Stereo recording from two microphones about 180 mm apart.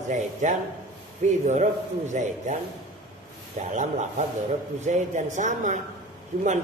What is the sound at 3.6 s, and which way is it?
A man's voice, 40° right (ahead or behind).